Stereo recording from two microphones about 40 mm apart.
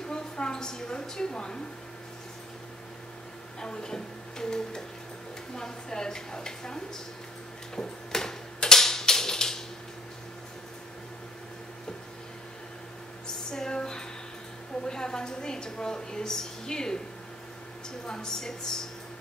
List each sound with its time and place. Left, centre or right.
0.0 s a sound: left
3.6 s a woman's voice: centre
7.7 s tick-tock: centre
13.5 s a sound: centre
14.9 s a woman's voice: centre
18.0 s a woman's voice: left